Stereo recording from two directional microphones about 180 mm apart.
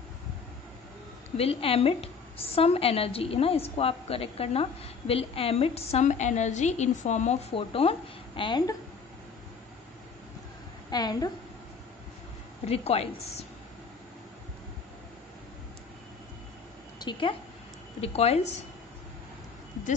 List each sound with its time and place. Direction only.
1.3 s a woman's voice: 30° left (ahead or behind)
10.9 s a woman's voice: 20° left (ahead or behind)
12.6 s a woman's voice: 35° left (ahead or behind)
17.0 s a woman's voice: 25° left (ahead or behind)